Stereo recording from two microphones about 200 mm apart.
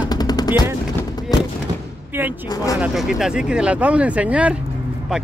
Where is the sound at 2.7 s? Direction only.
Centre (ahead or behind).